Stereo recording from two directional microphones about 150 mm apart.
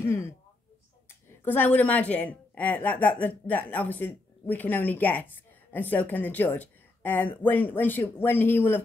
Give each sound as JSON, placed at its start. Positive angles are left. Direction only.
{"t": 0.0, "sound": "speech", "side_deg": 20}
{"t": 1.4, "sound": "a woman's voice", "side_deg": 15}